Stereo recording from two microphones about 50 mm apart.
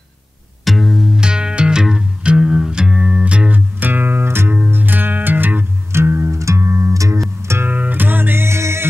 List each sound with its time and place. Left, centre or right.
0.7 s music: centre; by 3.5 s right
3.5 s music: right
4.6 s music: right
5.9 s music: right
6.3 s music: right
7.6 s music: right
8.5 s music: right